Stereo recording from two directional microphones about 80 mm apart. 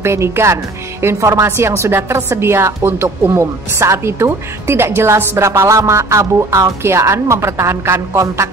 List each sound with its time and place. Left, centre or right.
0.0 s speech: right